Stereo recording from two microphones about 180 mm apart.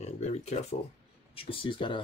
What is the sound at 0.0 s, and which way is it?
Speech, 35° left (ahead or behind).